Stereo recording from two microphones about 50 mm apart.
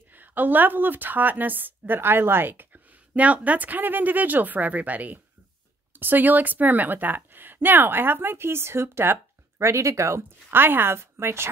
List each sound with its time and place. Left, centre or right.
0.1 s a woman's voice: right
3.2 s a woman's voice: right
9.6 s speech: right
10.5 s speech: right
11.1 s a woman's voice: right